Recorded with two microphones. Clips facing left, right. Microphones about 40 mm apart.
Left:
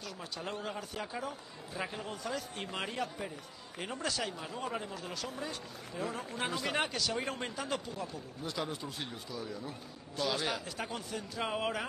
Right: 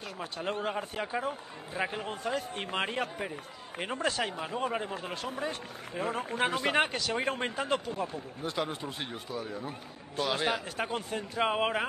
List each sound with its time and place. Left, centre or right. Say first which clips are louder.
0.2 s a man's voice: right 7 dB; right